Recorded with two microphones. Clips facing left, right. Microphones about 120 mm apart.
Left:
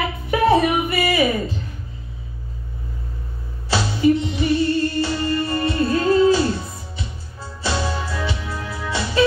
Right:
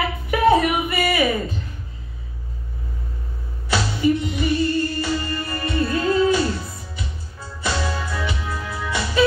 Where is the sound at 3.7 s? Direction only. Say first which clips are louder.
Left 2 dB; 25° left (ahead or behind).